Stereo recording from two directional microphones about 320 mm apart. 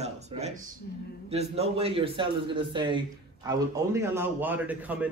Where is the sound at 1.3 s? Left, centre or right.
Centre.